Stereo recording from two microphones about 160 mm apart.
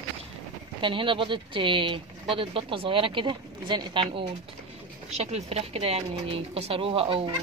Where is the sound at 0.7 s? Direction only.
30° right (ahead or behind).